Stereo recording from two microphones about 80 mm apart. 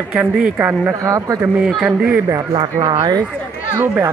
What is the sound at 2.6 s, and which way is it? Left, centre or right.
Speech, right.